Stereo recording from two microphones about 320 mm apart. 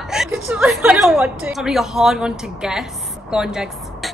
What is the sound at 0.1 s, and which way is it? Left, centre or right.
A woman's voice, centre.